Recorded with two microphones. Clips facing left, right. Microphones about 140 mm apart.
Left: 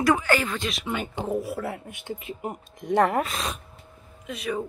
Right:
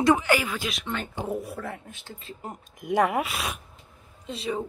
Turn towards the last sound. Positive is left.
turn(degrees=-25)  # may be behind; listen again after turning